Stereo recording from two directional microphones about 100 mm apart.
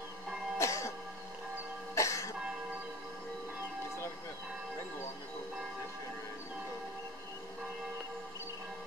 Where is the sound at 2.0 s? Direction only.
30° left (ahead or behind).